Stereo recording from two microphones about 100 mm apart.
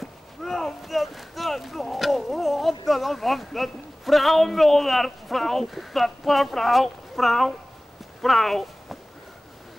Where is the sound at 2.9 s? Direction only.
Centre (ahead or behind).